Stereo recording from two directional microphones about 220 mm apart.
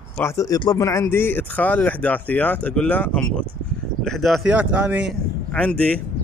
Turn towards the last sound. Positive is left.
turn(degrees=5)  # may be behind; listen again after turning